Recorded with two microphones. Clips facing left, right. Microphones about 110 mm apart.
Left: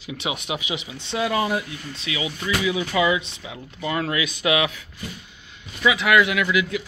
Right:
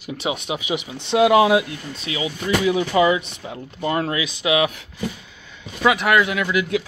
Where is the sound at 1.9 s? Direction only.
35° right (ahead or behind).